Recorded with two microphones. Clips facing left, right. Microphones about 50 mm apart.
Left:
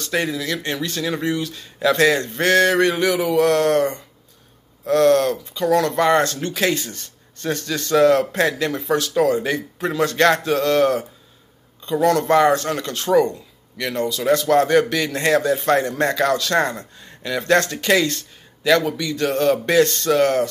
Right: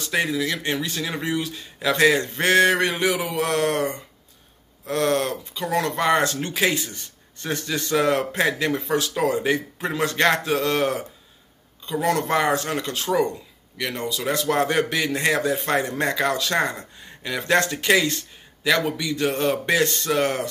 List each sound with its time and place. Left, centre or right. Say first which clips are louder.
0.0 s speech: even; centre